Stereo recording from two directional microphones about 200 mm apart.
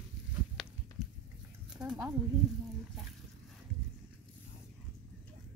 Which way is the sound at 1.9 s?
10° right (ahead or behind).